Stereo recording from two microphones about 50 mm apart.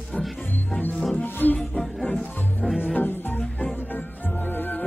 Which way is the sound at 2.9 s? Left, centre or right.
Left.